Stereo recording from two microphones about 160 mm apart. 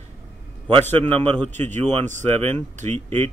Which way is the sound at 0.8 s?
10° left (ahead or behind).